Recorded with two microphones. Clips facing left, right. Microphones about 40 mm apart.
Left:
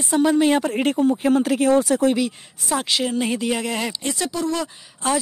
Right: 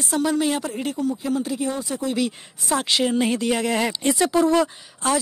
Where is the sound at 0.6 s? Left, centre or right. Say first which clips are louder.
Left 6 dB; left.